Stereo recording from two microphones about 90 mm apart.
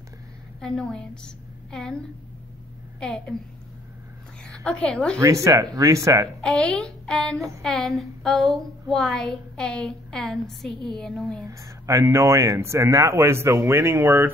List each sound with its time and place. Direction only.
0.6 s a woman's voice: 10° left (ahead or behind)
4.5 s a woman's voice: 10° left (ahead or behind)
5.2 s speech: 35° right (ahead or behind)
6.4 s a woman's voice: 10° left (ahead or behind)
11.4 s speech: 40° right (ahead or behind)